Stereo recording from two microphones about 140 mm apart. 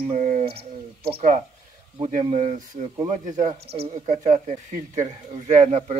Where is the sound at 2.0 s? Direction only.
60° right (ahead or behind).